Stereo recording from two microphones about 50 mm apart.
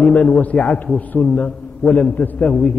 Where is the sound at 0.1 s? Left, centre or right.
Left.